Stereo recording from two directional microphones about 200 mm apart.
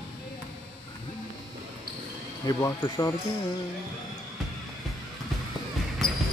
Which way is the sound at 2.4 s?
15° left (ahead or behind).